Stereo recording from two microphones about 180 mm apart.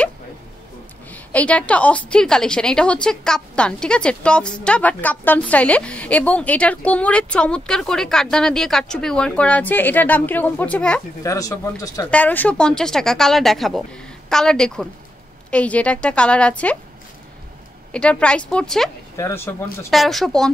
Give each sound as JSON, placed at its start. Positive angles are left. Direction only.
{"t": 1.1, "sound": "a woman's voice", "side_deg": 5}
{"t": 11.2, "sound": "speech", "side_deg": 20}
{"t": 12.1, "sound": "a woman's voice", "side_deg": 10}
{"t": 17.9, "sound": "speech", "side_deg": 5}
{"t": 19.1, "sound": "a woman's voice", "side_deg": 15}
{"t": 19.9, "sound": "speech", "side_deg": 0}